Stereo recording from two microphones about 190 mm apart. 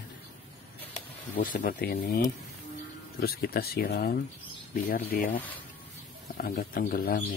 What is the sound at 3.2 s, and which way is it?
Speech, 55° left (ahead or behind).